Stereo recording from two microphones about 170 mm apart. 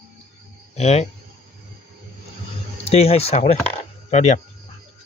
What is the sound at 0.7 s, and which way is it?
Speech, 40° left (ahead or behind).